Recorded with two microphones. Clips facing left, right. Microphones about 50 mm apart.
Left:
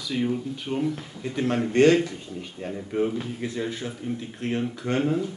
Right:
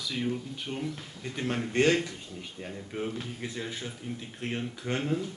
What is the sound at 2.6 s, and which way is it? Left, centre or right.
Speech, centre.